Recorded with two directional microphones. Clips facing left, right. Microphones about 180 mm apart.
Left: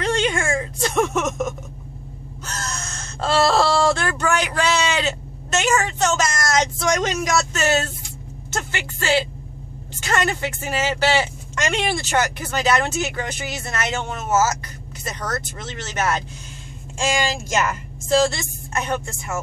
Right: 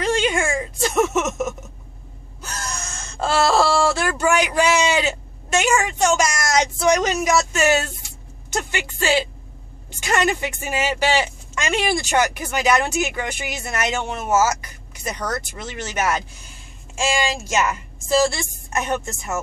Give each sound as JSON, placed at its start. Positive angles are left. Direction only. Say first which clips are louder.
{"t": 0.0, "sound": "a sound", "louder": "right 1 dB", "side_deg": -10}
{"t": 2.4, "sound": "gasp", "louder": "even", "side_deg": -10}
{"t": 7.3, "sound": "speech", "louder": "right 1 dB", "side_deg": -10}
{"t": 18.1, "sound": "speech", "louder": "even", "side_deg": -15}